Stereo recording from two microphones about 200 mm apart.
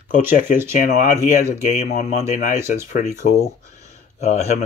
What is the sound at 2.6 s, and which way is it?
Speech, 15° right (ahead or behind).